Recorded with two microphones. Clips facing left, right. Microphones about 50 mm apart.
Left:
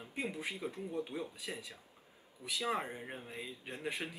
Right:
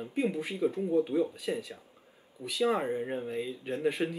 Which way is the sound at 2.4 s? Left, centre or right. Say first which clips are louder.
Right 4 dB; right.